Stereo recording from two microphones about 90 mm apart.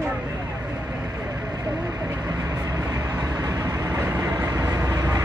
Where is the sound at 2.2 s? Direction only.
40° right (ahead or behind).